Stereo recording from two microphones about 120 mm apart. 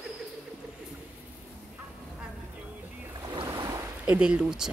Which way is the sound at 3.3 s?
40° right (ahead or behind).